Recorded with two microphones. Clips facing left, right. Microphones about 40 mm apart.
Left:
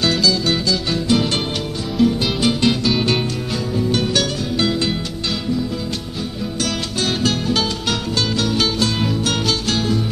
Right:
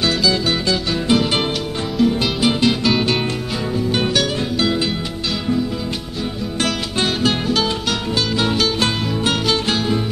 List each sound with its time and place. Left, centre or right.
1.1 s music: centre
7.2 s music: centre
9.3 s music: centre